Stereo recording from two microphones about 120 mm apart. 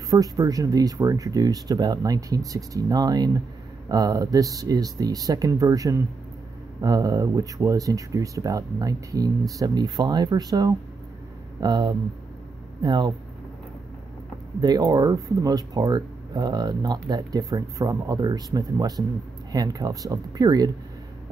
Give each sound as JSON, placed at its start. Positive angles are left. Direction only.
{"t": 0.1, "sound": "speech", "side_deg": -30}
{"t": 14.6, "sound": "speech", "side_deg": -30}